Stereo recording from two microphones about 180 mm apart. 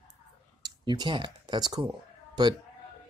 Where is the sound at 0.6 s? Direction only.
25° right (ahead or behind).